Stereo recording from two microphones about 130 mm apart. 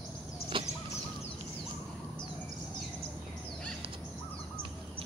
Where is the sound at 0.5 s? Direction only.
40° right (ahead or behind).